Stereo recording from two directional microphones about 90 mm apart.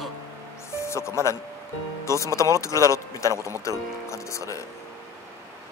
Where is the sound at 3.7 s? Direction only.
35° left (ahead or behind).